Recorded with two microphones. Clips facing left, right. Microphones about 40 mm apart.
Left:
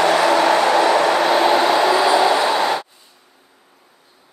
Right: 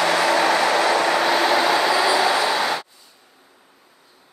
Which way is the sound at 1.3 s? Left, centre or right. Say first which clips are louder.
Left 3 dB; left.